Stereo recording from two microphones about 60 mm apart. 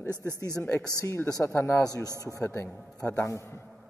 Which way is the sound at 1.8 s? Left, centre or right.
Left.